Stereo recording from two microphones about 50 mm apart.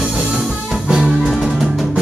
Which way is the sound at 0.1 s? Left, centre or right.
Centre.